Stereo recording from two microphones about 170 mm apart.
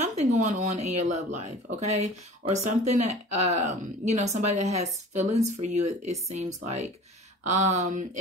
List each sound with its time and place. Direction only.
0.0 s speech: 40° right (ahead or behind)